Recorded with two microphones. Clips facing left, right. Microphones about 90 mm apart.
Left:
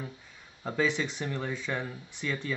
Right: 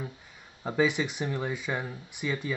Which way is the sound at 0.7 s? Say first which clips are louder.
Right 3 dB; 10° right (ahead or behind).